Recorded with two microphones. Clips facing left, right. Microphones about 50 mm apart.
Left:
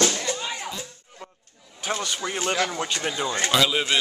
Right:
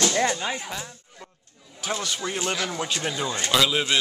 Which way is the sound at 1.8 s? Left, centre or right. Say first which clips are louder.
Left 1 dB; centre.